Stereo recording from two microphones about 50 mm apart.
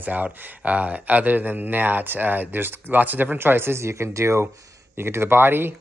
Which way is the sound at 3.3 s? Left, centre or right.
Right.